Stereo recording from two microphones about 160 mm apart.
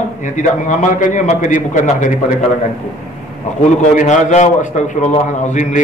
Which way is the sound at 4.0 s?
50° left (ahead or behind).